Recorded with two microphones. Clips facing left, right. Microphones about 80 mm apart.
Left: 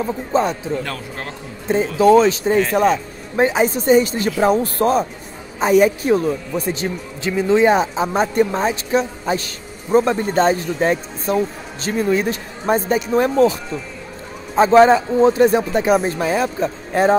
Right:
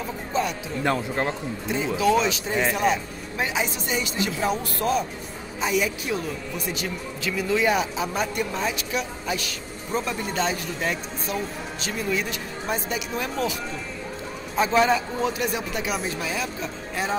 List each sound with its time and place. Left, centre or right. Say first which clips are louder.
0.0 s speech: left 8 dB; left
0.8 s speech: right 5 dB; right
2.0 s speech: left 10 dB; left